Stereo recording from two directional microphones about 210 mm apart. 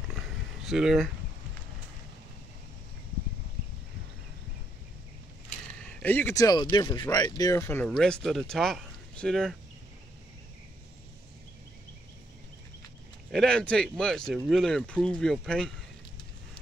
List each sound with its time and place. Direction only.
0.7 s speech: centre (ahead or behind)
5.8 s speech: 5° left (ahead or behind)
13.3 s speech: 5° left (ahead or behind)